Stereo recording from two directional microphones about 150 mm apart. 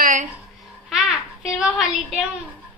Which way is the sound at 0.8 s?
Centre (ahead or behind).